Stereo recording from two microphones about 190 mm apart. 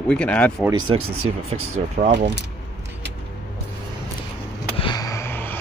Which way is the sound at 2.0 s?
65° right (ahead or behind).